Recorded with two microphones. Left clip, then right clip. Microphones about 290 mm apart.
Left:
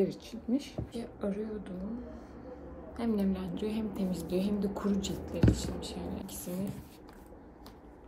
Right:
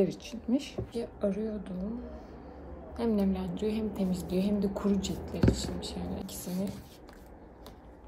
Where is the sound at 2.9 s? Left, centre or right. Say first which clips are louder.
Right 3 dB; centre.